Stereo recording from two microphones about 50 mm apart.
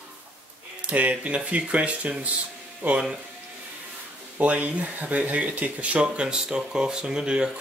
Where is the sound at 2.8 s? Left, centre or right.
Right.